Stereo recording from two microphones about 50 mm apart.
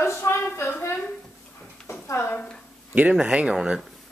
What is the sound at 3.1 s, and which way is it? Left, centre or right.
Speech, centre.